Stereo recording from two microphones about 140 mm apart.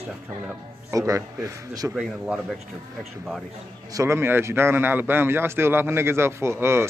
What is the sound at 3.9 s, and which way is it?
A man's voice, 20° right (ahead or behind).